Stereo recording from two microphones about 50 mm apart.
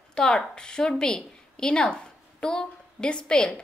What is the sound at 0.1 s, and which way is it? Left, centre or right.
A woman's voice, centre.